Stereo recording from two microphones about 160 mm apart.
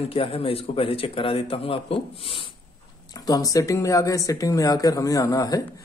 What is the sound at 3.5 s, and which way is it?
Speech, 20° left (ahead or behind).